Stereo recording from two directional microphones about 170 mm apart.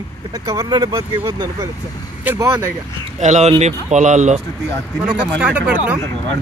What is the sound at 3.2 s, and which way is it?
Speech, 45° right (ahead or behind).